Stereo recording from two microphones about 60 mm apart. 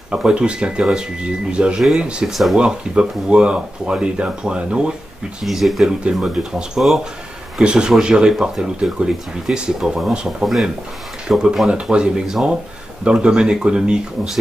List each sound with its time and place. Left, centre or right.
0.1 s speech: centre
2.2 s speech: centre
2.6 s speech: centre
5.4 s speech: centre
6.2 s speech: centre